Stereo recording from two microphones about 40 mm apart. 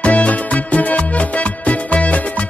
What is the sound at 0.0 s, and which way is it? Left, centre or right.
Music, left.